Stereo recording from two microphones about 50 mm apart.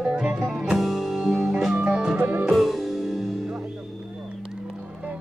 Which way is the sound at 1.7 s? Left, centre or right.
Right.